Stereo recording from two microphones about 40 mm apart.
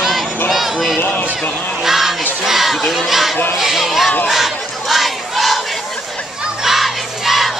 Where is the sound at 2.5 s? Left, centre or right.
Centre.